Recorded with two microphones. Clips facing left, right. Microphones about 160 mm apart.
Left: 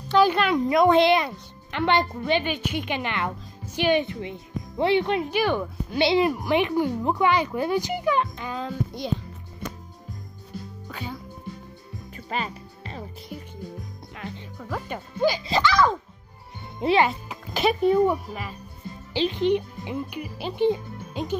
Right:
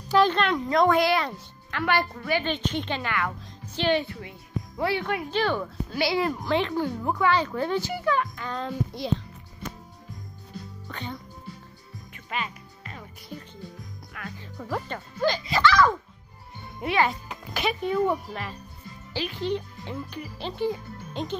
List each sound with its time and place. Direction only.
0.1 s speech: 5° left (ahead or behind)
0.8 s speech: 20° left (ahead or behind)
2.4 s speech: 10° left (ahead or behind)
8.5 s speech: centre (ahead or behind)
10.9 s music: 5° left (ahead or behind)
12.3 s music: 35° left (ahead or behind)
13.3 s music: 10° left (ahead or behind)
14.1 s music: 25° left (ahead or behind)
14.9 s speech: 10° left (ahead or behind)
15.4 s a child's voice: 25° left (ahead or behind)
18.0 s speech: 5° left (ahead or behind)
19.1 s speech: 20° left (ahead or behind); by 21.4 s 5° left (ahead or behind)